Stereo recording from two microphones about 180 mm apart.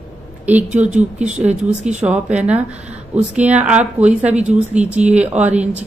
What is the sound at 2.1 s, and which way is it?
A woman's voice, 5° right (ahead or behind).